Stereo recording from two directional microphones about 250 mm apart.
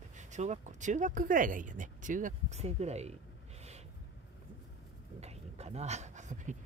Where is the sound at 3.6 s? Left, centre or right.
Right.